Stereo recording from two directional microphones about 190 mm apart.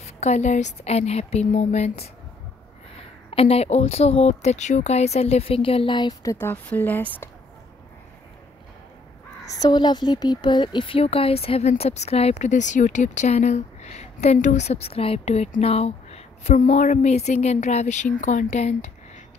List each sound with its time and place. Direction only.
0.0 s speech: 35° left (ahead or behind)
3.3 s speech: 30° left (ahead or behind)
6.3 s speech: 10° left (ahead or behind)
9.5 s speech: 20° left (ahead or behind); by 19.2 s 35° left (ahead or behind)